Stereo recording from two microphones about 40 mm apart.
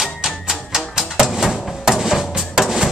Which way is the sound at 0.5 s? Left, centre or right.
Centre.